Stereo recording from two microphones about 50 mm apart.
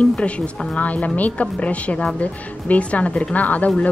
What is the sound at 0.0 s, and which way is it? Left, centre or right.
A woman's voice, left.